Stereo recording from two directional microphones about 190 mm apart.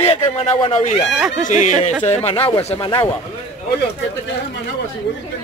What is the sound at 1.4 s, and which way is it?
A man's voice, 40° left (ahead or behind).